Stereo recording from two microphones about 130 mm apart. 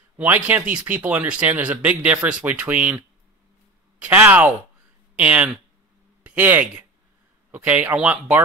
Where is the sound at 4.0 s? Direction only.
15° right (ahead or behind).